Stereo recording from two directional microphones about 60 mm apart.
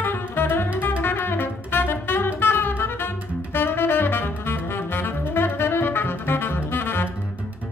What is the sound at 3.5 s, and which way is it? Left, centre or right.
Saxophone, left.